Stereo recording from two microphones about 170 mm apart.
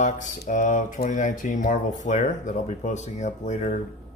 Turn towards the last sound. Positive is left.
turn(degrees=45)  # may be behind; listen again after turning